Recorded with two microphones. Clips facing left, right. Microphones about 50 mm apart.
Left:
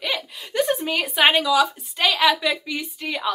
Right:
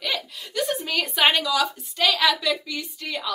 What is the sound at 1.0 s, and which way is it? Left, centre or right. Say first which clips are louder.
A woman's voice: left 3 dB; centre.